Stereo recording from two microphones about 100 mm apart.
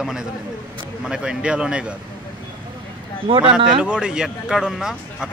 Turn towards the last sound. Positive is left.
turn(degrees=-5)  # may be behind; listen again after turning